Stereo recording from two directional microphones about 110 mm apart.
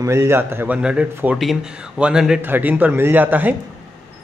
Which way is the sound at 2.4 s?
15° right (ahead or behind).